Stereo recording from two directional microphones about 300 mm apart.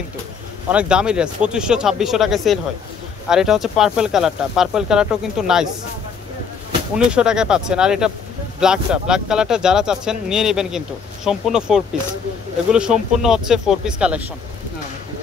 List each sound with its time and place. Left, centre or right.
0.7 s speech: centre
7.1 s speech: centre